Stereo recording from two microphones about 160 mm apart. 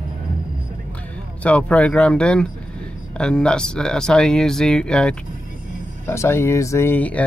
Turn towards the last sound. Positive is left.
turn(degrees=10)  # may be behind; listen again after turning